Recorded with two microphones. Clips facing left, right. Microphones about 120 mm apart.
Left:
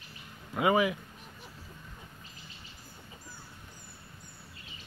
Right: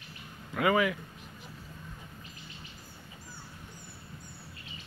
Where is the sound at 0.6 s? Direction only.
20° left (ahead or behind).